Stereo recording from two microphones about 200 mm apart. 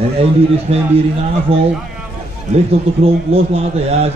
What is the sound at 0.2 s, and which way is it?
A man's voice, 30° right (ahead or behind).